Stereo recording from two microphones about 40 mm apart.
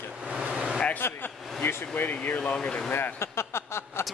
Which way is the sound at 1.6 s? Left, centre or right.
Left.